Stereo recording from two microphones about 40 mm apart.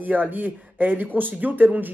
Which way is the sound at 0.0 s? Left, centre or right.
Right.